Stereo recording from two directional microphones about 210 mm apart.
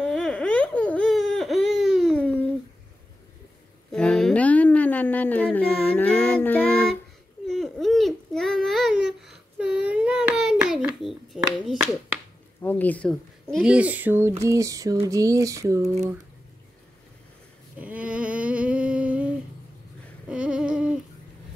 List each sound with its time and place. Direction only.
0.0 s baby cry: 5° left (ahead or behind)
3.9 s a sound: 5° left (ahead or behind)
12.6 s speech: 10° left (ahead or behind); by 15.9 s 15° right (ahead or behind)
17.7 s humming: 5° right (ahead or behind)